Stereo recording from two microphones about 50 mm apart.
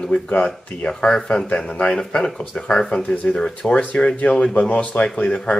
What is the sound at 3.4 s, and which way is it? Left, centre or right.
Speech, centre.